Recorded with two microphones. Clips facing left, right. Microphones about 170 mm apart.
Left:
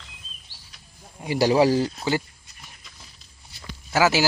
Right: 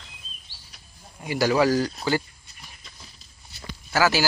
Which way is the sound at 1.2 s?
30° left (ahead or behind).